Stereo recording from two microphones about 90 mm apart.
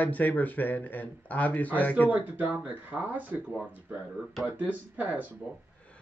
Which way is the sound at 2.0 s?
15° right (ahead or behind).